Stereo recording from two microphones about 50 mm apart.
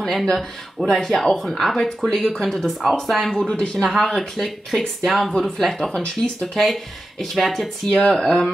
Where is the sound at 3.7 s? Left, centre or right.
Centre.